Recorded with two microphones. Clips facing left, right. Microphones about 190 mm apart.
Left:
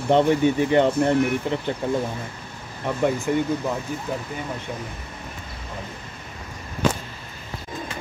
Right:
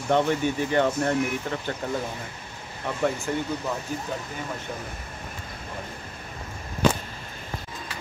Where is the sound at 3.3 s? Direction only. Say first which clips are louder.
Left 6 dB; 15° left (ahead or behind).